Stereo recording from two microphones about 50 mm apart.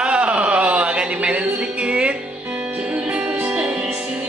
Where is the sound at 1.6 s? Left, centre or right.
Right.